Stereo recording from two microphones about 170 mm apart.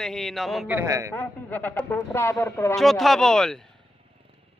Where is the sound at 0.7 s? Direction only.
15° right (ahead or behind).